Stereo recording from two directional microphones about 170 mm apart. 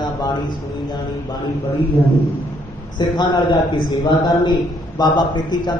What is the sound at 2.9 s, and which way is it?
A man's voice, 25° left (ahead or behind).